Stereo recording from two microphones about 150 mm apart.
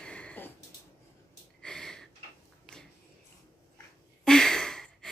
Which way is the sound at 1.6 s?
5° left (ahead or behind).